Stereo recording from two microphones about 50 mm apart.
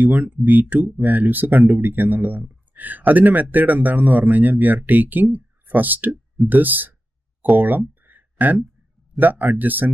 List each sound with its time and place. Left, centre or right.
0.0 s speech: right
8.0 s a sound: right
9.1 s speech: right